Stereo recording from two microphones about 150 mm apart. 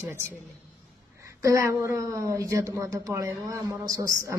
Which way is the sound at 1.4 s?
20° right (ahead or behind).